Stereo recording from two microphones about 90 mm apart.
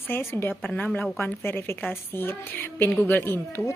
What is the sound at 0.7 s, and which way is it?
Speech, 5° left (ahead or behind).